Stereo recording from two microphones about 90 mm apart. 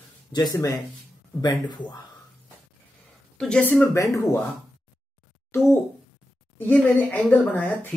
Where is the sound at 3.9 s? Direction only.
30° left (ahead or behind).